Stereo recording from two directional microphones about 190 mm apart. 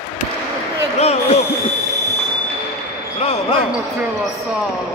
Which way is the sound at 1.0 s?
35° left (ahead or behind).